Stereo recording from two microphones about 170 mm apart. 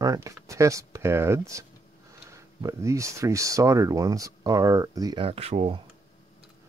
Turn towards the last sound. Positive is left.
turn(degrees=-35)  # may be behind; listen again after turning